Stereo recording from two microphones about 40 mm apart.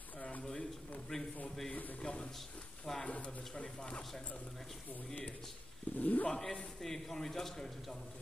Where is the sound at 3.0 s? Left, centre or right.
Left.